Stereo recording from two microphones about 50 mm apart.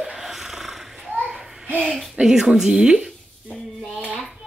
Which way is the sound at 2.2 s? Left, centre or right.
Centre.